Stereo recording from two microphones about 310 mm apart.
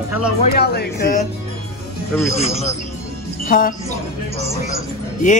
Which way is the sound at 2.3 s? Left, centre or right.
Centre.